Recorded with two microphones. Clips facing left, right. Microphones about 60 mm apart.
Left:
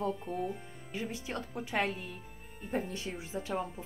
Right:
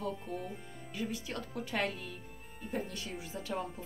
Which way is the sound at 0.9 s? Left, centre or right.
Left.